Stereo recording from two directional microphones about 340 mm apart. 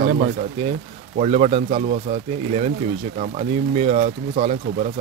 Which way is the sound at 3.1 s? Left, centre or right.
Centre.